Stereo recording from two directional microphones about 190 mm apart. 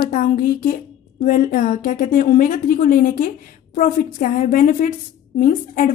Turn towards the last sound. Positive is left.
turn(degrees=45)  # may be behind; listen again after turning